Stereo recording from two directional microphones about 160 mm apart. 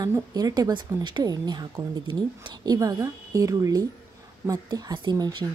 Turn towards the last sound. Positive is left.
turn(degrees=-25)  # may be behind; listen again after turning